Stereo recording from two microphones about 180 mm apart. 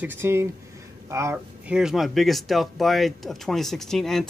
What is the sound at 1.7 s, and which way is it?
Speech, 5° right (ahead or behind).